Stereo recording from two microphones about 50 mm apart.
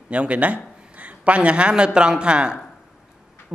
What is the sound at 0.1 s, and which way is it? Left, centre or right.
A man's voice, right.